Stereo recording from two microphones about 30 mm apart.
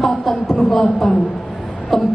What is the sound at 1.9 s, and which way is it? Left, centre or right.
Music, centre.